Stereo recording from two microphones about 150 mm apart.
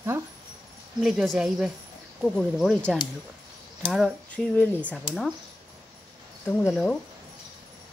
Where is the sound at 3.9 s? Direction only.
Centre (ahead or behind).